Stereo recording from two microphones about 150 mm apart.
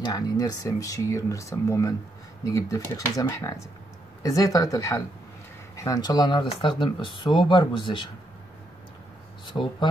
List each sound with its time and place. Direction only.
0.0 s speech: 25° left (ahead or behind)
9.5 s speech: 35° left (ahead or behind)